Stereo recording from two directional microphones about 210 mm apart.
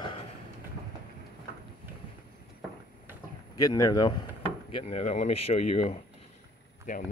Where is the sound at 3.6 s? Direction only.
15° left (ahead or behind).